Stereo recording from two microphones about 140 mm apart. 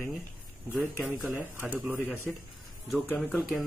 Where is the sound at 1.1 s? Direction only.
15° right (ahead or behind).